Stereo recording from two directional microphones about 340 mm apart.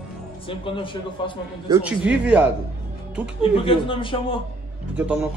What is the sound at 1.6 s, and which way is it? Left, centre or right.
Speech, centre.